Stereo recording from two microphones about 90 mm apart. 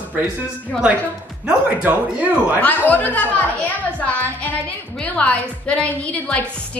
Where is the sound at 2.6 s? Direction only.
15° left (ahead or behind).